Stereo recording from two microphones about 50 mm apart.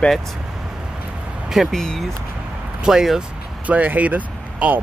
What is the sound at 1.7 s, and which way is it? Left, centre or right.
Speech, centre.